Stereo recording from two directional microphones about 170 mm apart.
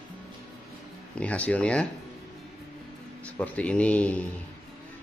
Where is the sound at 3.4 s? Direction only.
5° left (ahead or behind).